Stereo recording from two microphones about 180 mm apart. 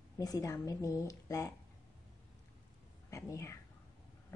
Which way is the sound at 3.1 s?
15° left (ahead or behind).